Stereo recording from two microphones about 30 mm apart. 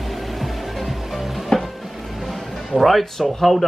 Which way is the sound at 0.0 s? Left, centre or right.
Centre.